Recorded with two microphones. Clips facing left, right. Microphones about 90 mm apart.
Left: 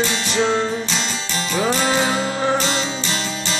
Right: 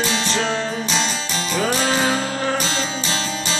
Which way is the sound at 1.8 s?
5° left (ahead or behind).